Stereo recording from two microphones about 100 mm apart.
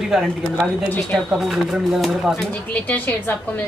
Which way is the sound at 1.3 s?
Centre (ahead or behind).